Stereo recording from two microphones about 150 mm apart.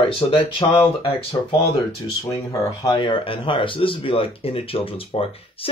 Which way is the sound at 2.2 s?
20° left (ahead or behind).